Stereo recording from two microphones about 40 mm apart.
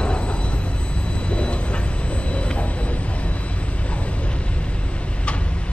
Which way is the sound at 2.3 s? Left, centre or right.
Left.